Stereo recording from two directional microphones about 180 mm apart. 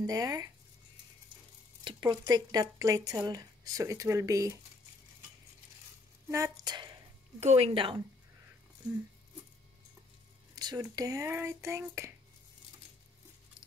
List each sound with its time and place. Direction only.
0.0 s speech: 20° right (ahead or behind)
1.9 s speech: 20° right (ahead or behind)
6.2 s speech: 15° right (ahead or behind)
7.3 s a woman's voice: 35° right (ahead or behind)
10.5 s speech: 20° right (ahead or behind)